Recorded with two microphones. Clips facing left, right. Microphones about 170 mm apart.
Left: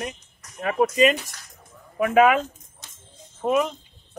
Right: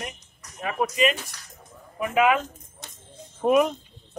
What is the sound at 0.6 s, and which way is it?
Speech, 45° left (ahead or behind).